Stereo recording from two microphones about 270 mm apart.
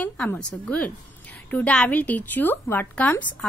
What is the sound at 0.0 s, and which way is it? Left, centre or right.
A woman's voice, centre.